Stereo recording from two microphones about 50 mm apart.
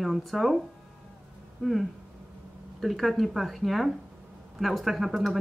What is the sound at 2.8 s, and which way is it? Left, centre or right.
Speech, centre.